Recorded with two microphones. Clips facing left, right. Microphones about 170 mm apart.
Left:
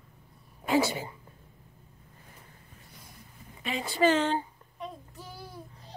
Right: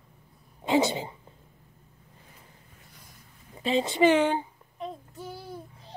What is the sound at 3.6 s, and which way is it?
Child singing, 30° right (ahead or behind).